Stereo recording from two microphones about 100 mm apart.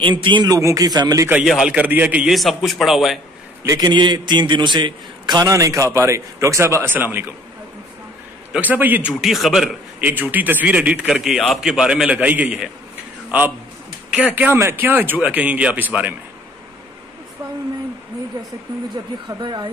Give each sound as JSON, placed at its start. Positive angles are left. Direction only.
{"t": 0.0, "sound": "a man's voice", "side_deg": -55}
{"t": 0.6, "sound": "a man's voice", "side_deg": -35}
{"t": 1.4, "sound": "speech", "side_deg": -5}
{"t": 2.2, "sound": "a man's voice", "side_deg": 0}
{"t": 3.6, "sound": "a man's voice", "side_deg": -35}
{"t": 3.9, "sound": "a man's voice", "side_deg": -50}
{"t": 5.5, "sound": "speech", "side_deg": -35}
{"t": 8.5, "sound": "speech", "side_deg": -15}
{"t": 9.1, "sound": "a man's voice", "side_deg": 0}
{"t": 9.9, "sound": "speech", "side_deg": -15}
{"t": 14.3, "sound": "speech", "side_deg": -20}
{"t": 19.2, "sound": "a man's voice", "side_deg": -50}